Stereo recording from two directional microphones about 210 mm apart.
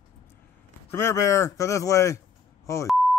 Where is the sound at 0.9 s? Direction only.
10° left (ahead or behind).